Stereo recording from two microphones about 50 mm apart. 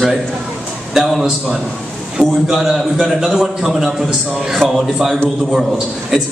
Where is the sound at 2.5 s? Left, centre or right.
Centre.